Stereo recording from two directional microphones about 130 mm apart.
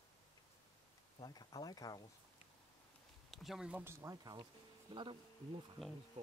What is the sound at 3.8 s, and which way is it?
Speech, 20° right (ahead or behind).